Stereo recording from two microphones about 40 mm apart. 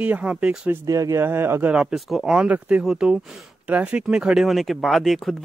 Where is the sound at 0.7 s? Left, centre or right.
Right.